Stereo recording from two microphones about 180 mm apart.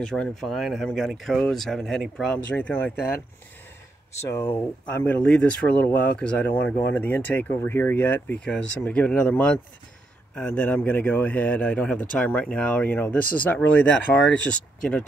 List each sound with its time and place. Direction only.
0.0 s speech: 5° left (ahead or behind)
4.2 s speech: 15° left (ahead or behind)